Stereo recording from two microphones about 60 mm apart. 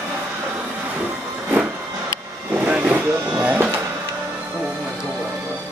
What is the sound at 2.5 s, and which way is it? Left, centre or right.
Vehicle, right.